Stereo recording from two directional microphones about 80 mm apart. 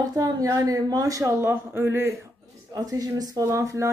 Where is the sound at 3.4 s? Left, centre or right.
Right.